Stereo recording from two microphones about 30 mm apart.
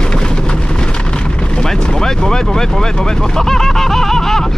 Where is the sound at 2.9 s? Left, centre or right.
Left.